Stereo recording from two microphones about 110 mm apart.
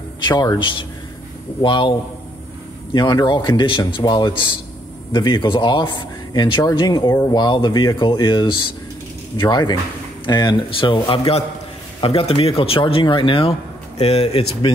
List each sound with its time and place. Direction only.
0.3 s a man's voice: 40° left (ahead or behind); by 14.7 s 65° left (ahead or behind)